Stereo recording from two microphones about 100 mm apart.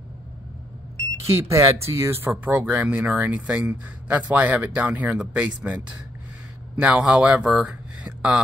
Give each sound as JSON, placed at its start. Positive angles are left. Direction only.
{"t": 1.3, "sound": "speech", "side_deg": -30}
{"t": 6.8, "sound": "speech", "side_deg": -10}